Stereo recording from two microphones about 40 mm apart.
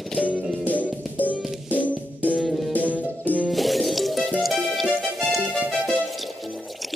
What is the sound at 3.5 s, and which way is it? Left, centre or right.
Music, centre.